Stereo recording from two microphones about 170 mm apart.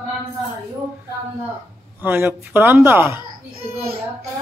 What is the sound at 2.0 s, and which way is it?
Speech, 15° right (ahead or behind).